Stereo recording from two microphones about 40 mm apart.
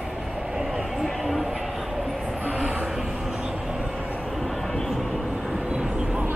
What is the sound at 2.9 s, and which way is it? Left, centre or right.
Vehicle, centre.